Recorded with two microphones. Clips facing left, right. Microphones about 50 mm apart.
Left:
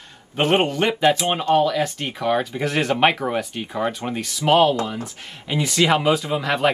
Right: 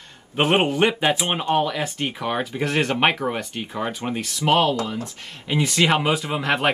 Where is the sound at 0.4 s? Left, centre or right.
Centre.